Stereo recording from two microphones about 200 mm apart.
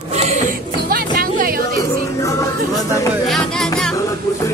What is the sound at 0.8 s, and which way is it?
Music, 50° right (ahead or behind).